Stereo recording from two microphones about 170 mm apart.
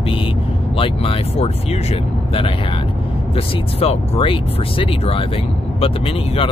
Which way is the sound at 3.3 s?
35° left (ahead or behind).